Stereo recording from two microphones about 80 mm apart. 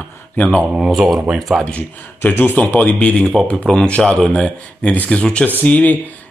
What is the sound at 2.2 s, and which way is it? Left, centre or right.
Speech, left.